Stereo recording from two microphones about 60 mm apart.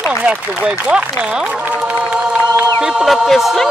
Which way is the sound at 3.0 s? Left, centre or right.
Centre.